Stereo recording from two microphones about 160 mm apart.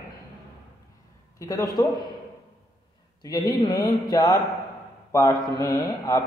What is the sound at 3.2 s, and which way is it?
A man's voice, 25° left (ahead or behind).